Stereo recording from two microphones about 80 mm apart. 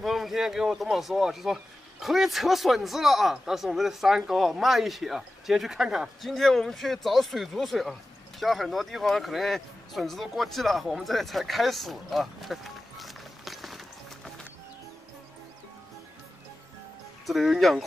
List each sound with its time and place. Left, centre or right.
0.0 s speech: centre
17.3 s speech: centre